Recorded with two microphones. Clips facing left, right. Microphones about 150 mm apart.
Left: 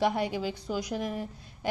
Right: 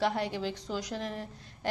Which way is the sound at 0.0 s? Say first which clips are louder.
Left 3 dB; 10° left (ahead or behind).